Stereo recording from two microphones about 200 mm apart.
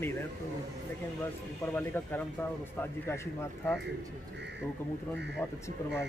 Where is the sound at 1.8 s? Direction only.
10° left (ahead or behind).